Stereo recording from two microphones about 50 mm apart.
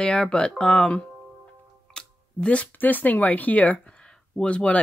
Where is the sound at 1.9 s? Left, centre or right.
Centre.